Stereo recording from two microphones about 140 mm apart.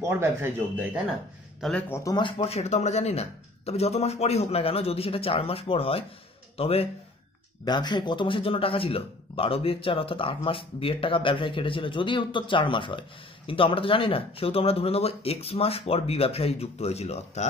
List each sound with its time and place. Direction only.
0.0 s speech: 15° right (ahead or behind)
1.6 s speech: 10° left (ahead or behind)
2.0 s speech: 35° left (ahead or behind)
7.6 s speech: 30° left (ahead or behind); by 17.5 s 50° left (ahead or behind)